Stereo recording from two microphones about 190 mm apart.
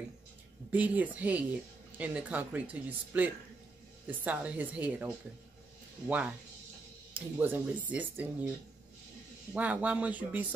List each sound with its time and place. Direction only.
0.7 s speech: 10° right (ahead or behind)
7.3 s speech: 10° right (ahead or behind)
9.5 s speech: 10° right (ahead or behind)